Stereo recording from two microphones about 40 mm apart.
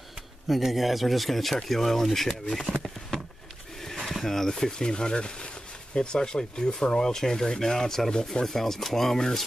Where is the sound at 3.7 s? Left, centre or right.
Centre.